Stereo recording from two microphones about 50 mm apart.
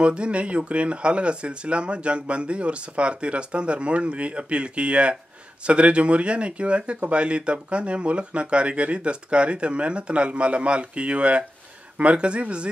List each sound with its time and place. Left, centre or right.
0.0 s speech: right